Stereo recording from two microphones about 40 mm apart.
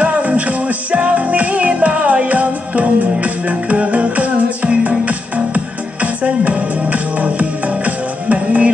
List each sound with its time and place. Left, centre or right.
0.0 s music: right